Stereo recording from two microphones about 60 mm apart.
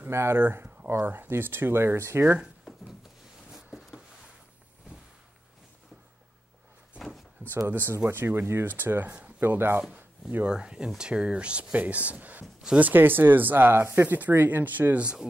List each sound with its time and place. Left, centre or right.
0.1 s speech: right
3.5 s a sound: centre
7.5 s speech: right
10.4 s speech: centre; by 14.0 s right
14.0 s speech: right